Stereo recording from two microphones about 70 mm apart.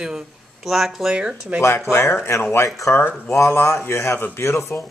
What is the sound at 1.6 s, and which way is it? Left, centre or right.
Speech, left.